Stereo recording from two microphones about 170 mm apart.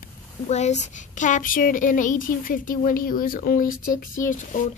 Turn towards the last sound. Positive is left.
turn(degrees=50)  # may be behind; listen again after turning